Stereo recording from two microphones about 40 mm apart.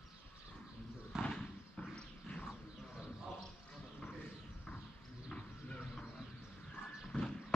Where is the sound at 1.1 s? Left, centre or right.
Centre.